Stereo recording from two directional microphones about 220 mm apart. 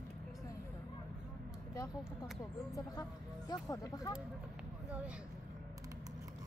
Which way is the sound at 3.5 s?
15° left (ahead or behind).